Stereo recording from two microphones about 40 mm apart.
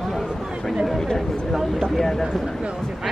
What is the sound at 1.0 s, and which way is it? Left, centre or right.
Speech, centre.